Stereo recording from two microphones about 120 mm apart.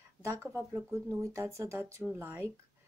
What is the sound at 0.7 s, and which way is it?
Speech, 25° right (ahead or behind).